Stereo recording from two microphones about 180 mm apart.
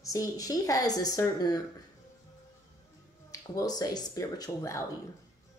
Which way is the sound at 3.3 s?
20° left (ahead or behind).